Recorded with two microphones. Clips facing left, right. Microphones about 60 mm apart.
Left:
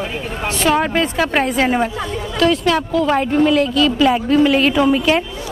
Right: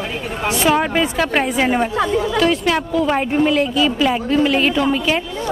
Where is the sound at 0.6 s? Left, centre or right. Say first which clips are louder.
Left 1 dB; centre.